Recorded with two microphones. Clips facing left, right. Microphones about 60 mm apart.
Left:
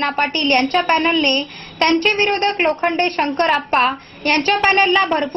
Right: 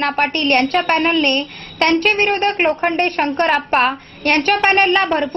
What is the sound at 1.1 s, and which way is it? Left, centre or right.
A woman's voice, centre.